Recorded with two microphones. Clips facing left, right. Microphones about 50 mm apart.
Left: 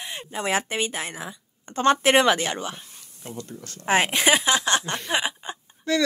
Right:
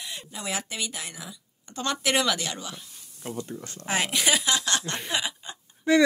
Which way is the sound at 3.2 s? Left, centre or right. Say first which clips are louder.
Right 2 dB; centre.